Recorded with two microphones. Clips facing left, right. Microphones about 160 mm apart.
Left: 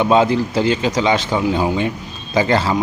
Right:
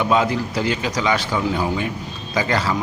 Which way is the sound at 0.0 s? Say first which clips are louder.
Left 5 dB; 25° left (ahead or behind).